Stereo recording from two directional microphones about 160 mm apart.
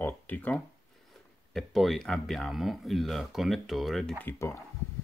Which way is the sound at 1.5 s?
Centre (ahead or behind).